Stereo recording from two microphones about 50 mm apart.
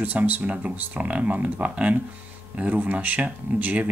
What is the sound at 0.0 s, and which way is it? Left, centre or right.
Speech, right.